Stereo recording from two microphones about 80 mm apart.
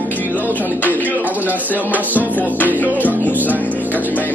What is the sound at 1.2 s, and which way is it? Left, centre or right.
Speech, right.